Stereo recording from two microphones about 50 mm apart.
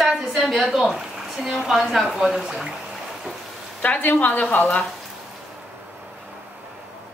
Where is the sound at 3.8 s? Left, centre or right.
Left.